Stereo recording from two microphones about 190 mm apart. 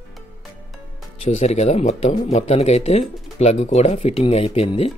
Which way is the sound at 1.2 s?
35° left (ahead or behind).